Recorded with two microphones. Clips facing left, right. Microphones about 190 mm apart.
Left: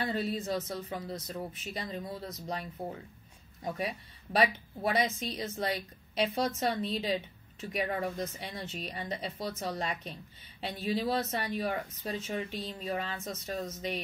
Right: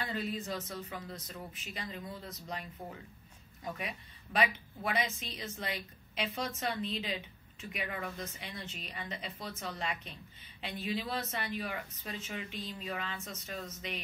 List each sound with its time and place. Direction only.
0.0 s a woman's voice: 35° left (ahead or behind)